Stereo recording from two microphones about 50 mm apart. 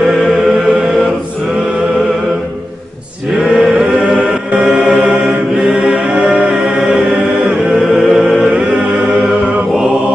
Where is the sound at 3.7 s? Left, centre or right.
Right.